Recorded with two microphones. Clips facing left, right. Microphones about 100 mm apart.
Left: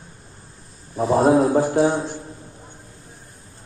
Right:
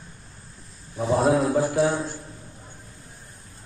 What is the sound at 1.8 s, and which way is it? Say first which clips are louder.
Speech: left 3 dB; 20° left (ahead or behind).